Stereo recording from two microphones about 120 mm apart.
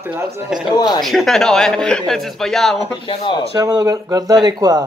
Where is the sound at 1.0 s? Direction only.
Centre (ahead or behind).